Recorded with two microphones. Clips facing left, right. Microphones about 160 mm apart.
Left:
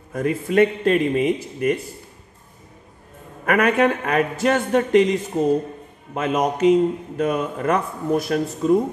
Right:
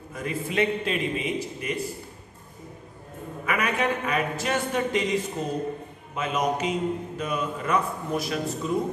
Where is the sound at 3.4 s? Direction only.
50° left (ahead or behind).